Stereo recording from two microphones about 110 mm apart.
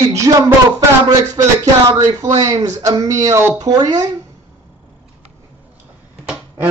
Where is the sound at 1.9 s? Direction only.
35° right (ahead or behind).